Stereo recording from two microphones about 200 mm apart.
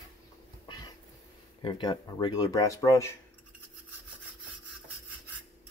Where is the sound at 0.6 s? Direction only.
20° left (ahead or behind).